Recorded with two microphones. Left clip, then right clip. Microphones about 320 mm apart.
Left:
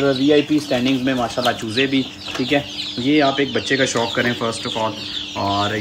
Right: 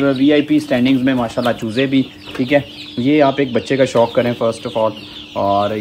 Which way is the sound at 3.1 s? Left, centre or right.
Centre.